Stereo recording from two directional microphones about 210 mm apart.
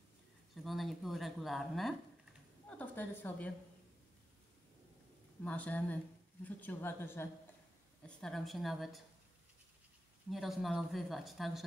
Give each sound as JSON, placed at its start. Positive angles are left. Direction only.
{"t": 0.6, "sound": "speech", "side_deg": 0}
{"t": 5.4, "sound": "speech", "side_deg": 5}
{"t": 10.3, "sound": "speech", "side_deg": 0}